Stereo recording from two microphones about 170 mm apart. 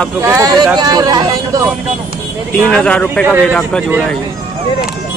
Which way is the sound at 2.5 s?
5° left (ahead or behind).